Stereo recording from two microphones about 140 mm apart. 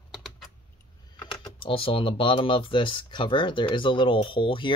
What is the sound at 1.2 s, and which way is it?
Speech, 35° left (ahead or behind).